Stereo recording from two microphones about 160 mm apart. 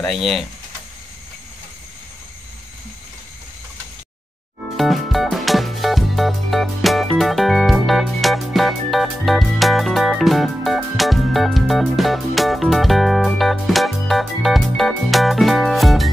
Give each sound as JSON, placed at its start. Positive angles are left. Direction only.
{"t": 0.0, "sound": "speech", "side_deg": 0}
{"t": 4.7, "sound": "music", "side_deg": 0}